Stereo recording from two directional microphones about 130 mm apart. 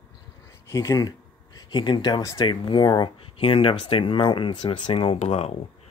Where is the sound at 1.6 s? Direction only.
40° left (ahead or behind); by 5.6 s 55° left (ahead or behind).